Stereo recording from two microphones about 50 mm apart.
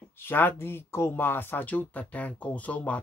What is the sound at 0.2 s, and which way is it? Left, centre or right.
Speech, left.